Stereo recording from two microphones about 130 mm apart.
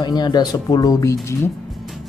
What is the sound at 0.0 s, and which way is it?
Speech, 35° left (ahead or behind).